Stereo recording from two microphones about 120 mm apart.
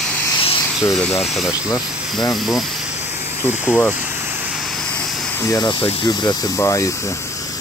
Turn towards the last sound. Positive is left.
turn(degrees=25)  # may be behind; listen again after turning